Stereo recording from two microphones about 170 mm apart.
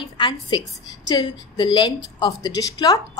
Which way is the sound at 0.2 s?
30° left (ahead or behind).